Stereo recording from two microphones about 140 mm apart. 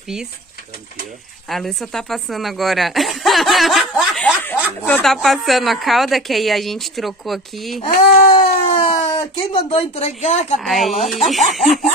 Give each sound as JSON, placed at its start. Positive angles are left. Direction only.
{"t": 1.5, "sound": "a woman's voice", "side_deg": 0}
{"t": 7.8, "sound": "baby cry", "side_deg": 40}
{"t": 8.8, "sound": "speech", "side_deg": 40}
{"t": 10.6, "sound": "a woman's voice", "side_deg": 0}